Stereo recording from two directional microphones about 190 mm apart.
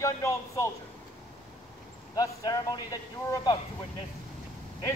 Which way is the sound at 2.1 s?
20° left (ahead or behind).